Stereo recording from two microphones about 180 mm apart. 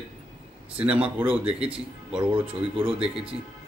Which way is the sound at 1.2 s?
30° right (ahead or behind).